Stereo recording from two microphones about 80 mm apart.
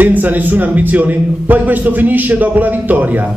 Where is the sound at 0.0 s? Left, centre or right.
Right.